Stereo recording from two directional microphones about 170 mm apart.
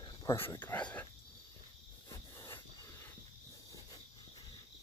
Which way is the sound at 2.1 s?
15° left (ahead or behind).